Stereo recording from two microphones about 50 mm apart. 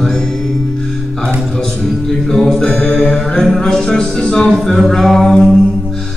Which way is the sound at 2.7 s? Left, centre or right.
Left.